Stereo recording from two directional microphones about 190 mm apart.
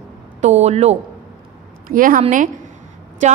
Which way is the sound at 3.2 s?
40° right (ahead or behind).